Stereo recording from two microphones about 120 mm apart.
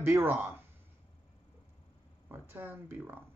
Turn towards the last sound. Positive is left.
turn(degrees=-15)  # may be behind; listen again after turning